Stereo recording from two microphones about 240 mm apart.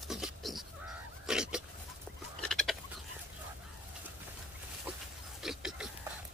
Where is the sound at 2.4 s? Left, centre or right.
Centre.